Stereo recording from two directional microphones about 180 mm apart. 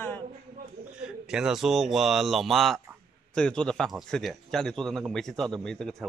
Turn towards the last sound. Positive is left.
turn(degrees=0)  # may be behind; listen again after turning